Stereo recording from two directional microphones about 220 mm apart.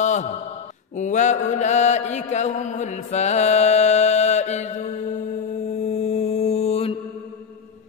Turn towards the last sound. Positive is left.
turn(degrees=25)  # may be behind; listen again after turning